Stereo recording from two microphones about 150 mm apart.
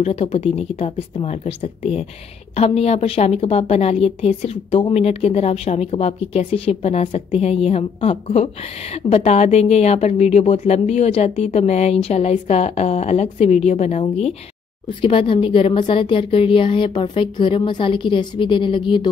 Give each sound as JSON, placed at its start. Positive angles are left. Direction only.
{"t": 0.0, "sound": "a woman's voice", "side_deg": 45}